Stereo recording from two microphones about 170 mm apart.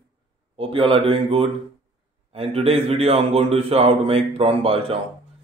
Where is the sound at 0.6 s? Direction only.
30° right (ahead or behind).